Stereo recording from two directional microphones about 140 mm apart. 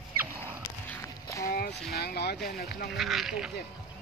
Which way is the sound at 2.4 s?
90° left.